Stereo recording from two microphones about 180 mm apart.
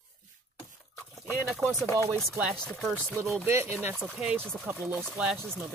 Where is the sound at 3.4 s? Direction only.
15° right (ahead or behind).